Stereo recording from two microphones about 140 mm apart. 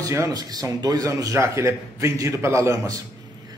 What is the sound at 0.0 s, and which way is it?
A man's voice, 25° right (ahead or behind).